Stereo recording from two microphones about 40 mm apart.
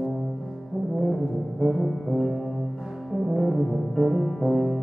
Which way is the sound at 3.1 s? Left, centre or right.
Centre.